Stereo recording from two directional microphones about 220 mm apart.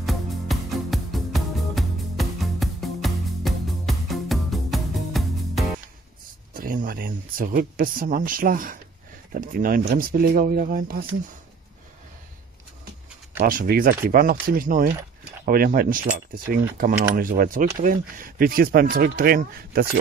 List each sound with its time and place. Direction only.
0.0 s music: centre (ahead or behind)
6.5 s speech: 40° right (ahead or behind)
13.4 s speech: 40° right (ahead or behind)